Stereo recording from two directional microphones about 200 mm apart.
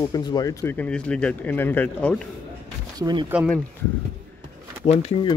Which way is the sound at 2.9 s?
20° right (ahead or behind).